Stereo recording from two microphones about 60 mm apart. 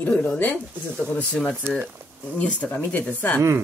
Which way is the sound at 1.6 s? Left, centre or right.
Right.